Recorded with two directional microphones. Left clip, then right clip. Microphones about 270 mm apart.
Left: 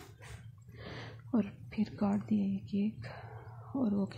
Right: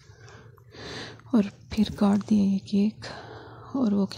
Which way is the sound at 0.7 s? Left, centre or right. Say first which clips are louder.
Right 9 dB; centre.